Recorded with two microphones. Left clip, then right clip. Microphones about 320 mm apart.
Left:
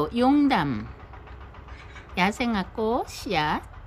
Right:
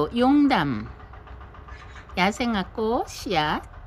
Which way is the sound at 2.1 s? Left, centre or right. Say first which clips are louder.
Right 1 dB; centre.